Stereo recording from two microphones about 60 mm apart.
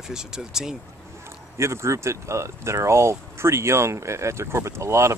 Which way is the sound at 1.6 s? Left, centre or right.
Right.